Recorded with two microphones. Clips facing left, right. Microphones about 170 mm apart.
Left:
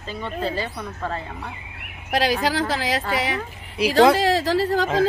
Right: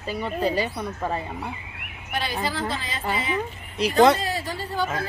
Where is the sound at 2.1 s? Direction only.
90° left.